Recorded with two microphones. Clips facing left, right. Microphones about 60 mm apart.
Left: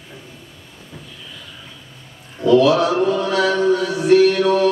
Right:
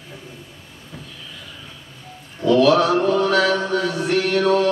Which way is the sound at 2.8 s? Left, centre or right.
Centre.